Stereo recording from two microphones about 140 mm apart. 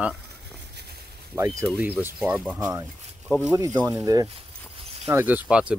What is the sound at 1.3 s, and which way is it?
Speech, 25° right (ahead or behind).